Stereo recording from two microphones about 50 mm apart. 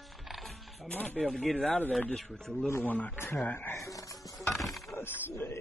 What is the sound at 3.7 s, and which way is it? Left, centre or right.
Music, left.